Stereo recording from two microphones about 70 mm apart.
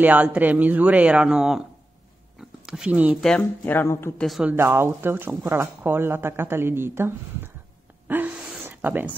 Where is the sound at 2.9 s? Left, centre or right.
Right.